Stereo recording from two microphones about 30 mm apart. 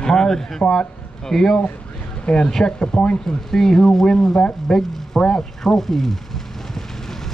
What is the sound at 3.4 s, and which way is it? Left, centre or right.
Speech, centre.